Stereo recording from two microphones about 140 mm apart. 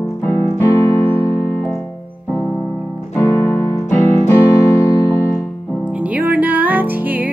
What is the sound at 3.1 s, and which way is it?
Piano, 15° left (ahead or behind).